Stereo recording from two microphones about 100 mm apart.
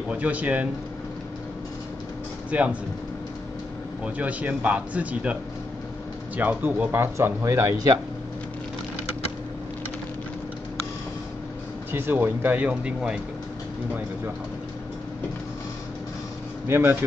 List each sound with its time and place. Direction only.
0.1 s a man's voice: 15° right (ahead or behind)
2.5 s a man's voice: 15° right (ahead or behind)
4.0 s a man's voice: 15° right (ahead or behind); by 7.9 s 30° right (ahead or behind)
11.9 s speech: 20° right (ahead or behind)
16.6 s speech: 25° right (ahead or behind)